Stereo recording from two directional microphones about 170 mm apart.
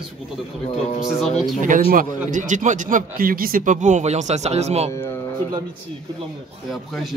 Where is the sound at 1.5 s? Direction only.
50° right (ahead or behind).